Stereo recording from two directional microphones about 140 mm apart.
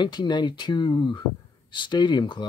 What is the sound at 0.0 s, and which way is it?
Speech, 35° left (ahead or behind).